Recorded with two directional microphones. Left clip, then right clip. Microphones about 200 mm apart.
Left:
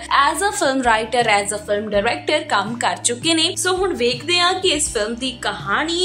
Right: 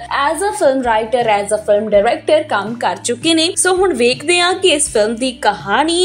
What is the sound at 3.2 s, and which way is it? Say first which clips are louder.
A woman's voice: right 5 dB; 20° right (ahead or behind).